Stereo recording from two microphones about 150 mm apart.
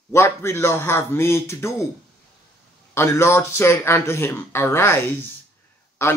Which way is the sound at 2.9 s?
15° left (ahead or behind).